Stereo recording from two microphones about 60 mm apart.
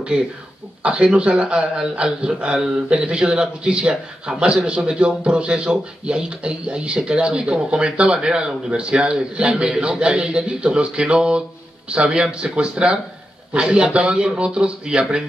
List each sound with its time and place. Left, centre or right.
0.8 s a man's voice: centre